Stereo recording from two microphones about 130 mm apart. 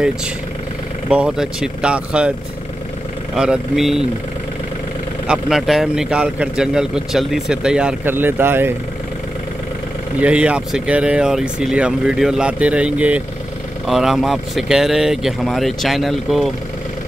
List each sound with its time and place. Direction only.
1.0 s speech: 5° right (ahead or behind)
3.3 s a man's voice: 5° right (ahead or behind)
5.2 s a man's voice: 5° right (ahead or behind)
8.0 s speech: 15° right (ahead or behind)
10.2 s a man's voice: 10° right (ahead or behind)